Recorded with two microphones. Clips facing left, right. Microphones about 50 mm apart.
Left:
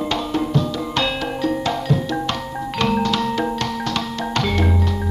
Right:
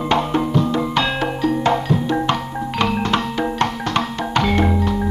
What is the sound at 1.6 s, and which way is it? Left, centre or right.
Music, centre.